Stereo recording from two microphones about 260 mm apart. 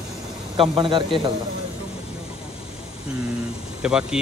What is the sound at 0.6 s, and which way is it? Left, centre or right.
Speech, centre.